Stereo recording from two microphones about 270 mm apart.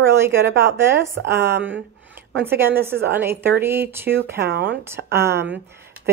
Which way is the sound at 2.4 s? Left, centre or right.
Centre.